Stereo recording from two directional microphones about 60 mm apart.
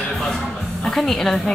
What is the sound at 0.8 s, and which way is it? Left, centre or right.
Speech, centre.